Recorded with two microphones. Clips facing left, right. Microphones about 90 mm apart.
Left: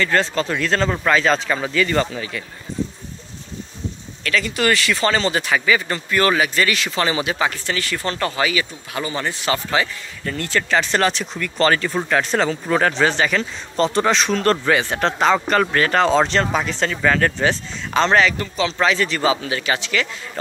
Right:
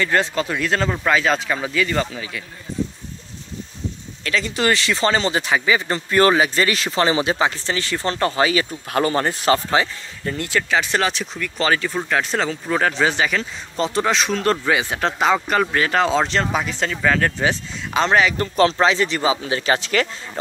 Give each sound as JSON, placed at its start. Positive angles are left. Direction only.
{"t": 0.0, "sound": "speech", "side_deg": -15}
{"t": 4.2, "sound": "speech", "side_deg": -25}
{"t": 8.9, "sound": "speech", "side_deg": -45}
{"t": 10.3, "sound": "speech", "side_deg": -15}
{"t": 10.7, "sound": "speech", "side_deg": -5}
{"t": 18.4, "sound": "speech", "side_deg": -45}
{"t": 18.8, "sound": "speech", "side_deg": -20}
{"t": 19.6, "sound": "speech", "side_deg": -40}